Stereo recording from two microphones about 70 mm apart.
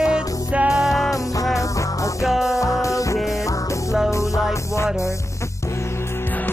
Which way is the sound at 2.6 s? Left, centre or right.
Left.